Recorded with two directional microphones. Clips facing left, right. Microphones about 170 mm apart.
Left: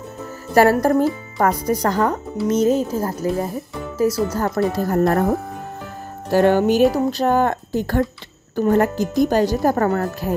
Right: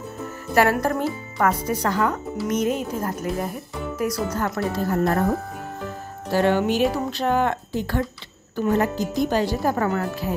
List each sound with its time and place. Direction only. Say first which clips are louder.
0.6 s speech: left 6 dB; 40° left (ahead or behind)
6.3 s speech: left 5 dB; 45° left (ahead or behind)